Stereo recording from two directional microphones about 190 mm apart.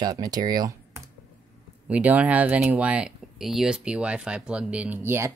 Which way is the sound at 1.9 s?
5° right (ahead or behind).